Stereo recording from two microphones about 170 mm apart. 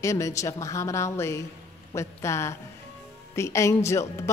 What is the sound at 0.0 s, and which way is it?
A woman's voice, 20° left (ahead or behind).